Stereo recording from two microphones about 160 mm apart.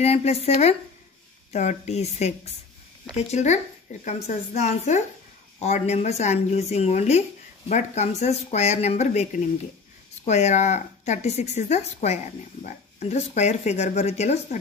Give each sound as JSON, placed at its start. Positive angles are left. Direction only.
{"t": 0.0, "sound": "a woman's voice", "side_deg": 40}